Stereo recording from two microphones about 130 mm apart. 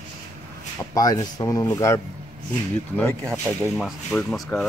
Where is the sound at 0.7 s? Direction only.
30° left (ahead or behind).